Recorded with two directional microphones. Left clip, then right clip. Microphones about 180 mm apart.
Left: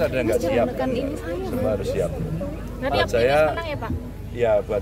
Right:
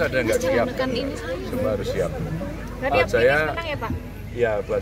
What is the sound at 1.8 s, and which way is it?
Speech, 35° left (ahead or behind).